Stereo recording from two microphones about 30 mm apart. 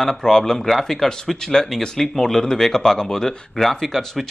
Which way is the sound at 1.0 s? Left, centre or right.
Centre.